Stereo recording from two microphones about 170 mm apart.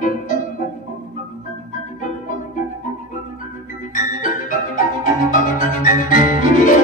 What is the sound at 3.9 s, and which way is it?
Music, 50° left (ahead or behind).